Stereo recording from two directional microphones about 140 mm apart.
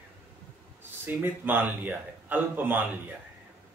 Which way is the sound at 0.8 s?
15° right (ahead or behind).